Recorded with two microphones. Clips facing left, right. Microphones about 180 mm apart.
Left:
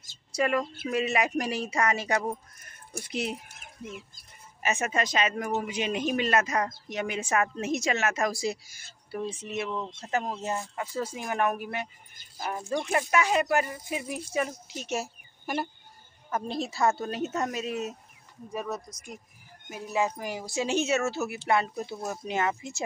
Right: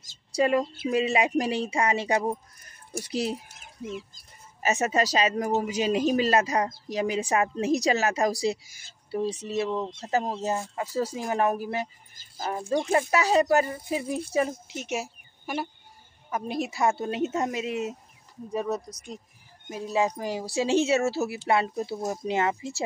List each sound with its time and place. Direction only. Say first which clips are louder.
0.3 s a woman's voice: right 4 dB; 30° right (ahead or behind)
4.6 s a woman's voice: right 4 dB; 40° right (ahead or behind)
9.8 s speech: right 4 dB; 20° right (ahead or behind)
10.1 s a woman's voice: right 3 dB; 35° right (ahead or behind); by 15.0 s 20° right (ahead or behind)
15.4 s speech: even; centre (ahead or behind)
16.3 s a woman's voice: right 1 dB; 15° right (ahead or behind)